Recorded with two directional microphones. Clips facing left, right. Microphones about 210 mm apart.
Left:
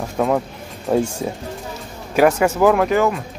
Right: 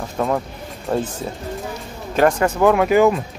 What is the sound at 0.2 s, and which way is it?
Speech, 10° left (ahead or behind).